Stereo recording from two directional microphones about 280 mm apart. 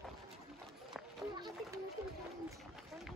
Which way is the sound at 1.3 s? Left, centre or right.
Centre.